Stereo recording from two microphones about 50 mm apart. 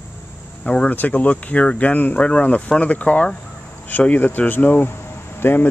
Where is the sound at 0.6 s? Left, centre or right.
Left.